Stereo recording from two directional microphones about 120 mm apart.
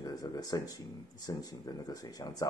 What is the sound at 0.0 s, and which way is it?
Speech, 30° left (ahead or behind).